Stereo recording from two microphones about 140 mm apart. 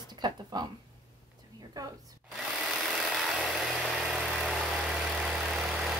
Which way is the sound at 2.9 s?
Centre (ahead or behind).